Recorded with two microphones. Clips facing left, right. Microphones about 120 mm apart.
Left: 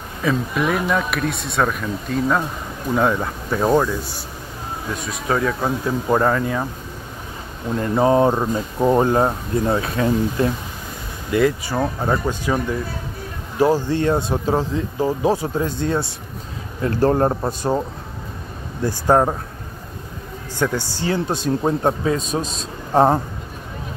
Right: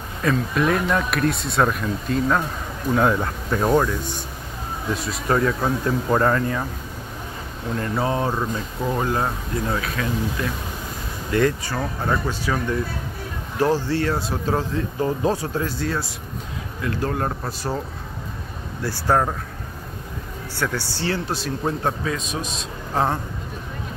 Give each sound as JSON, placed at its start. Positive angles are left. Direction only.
{"t": 0.2, "sound": "speech", "side_deg": 5}
{"t": 5.6, "sound": "speech", "side_deg": 10}
{"t": 7.8, "sound": "speech", "side_deg": 25}
{"t": 11.3, "sound": "speech", "side_deg": 10}
{"t": 13.6, "sound": "speech", "side_deg": 15}
{"t": 16.8, "sound": "a man's voice", "side_deg": 35}
{"t": 20.5, "sound": "speech", "side_deg": 15}
{"t": 22.1, "sound": "a man's voice", "side_deg": 35}